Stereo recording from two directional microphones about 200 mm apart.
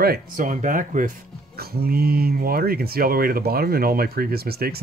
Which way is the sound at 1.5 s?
50° right (ahead or behind).